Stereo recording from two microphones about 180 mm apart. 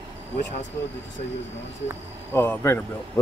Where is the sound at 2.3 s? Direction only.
10° left (ahead or behind).